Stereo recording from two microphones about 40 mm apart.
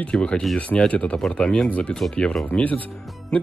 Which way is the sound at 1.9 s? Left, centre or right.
Centre.